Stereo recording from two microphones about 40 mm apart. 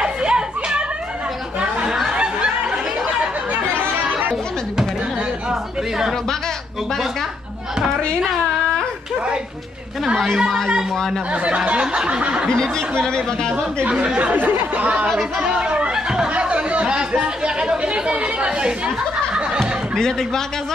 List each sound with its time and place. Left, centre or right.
0.0 s a sound: right
1.6 s chatter: right
2.1 s snicker: right
5.5 s a sound: centre
10.1 s a woman's voice: centre
11.3 s speech: right
13.0 s speech: centre
13.8 s speech: right
14.3 s speech: right
15.3 s chatter: right
16.3 s speech: right
20.0 s speech: centre